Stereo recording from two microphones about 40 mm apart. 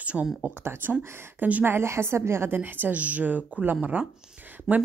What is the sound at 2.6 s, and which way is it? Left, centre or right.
Speech, right.